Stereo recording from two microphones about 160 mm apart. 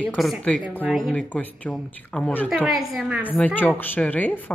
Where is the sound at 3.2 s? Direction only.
10° left (ahead or behind).